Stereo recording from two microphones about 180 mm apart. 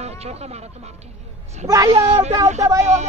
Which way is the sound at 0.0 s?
35° right (ahead or behind).